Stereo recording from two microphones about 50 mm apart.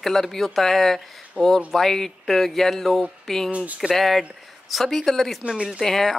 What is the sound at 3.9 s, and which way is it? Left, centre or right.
Speech, centre.